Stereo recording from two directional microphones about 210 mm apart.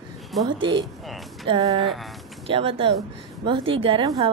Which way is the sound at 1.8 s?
Centre (ahead or behind).